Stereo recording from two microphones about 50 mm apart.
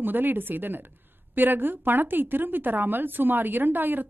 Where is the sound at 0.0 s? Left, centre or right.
Right.